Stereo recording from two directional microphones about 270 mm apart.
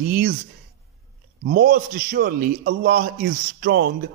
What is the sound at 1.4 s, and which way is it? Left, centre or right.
A man's voice, right.